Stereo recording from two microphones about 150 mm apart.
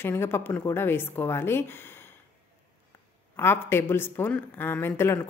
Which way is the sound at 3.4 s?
15° left (ahead or behind).